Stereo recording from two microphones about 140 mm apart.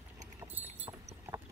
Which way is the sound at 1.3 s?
15° right (ahead or behind).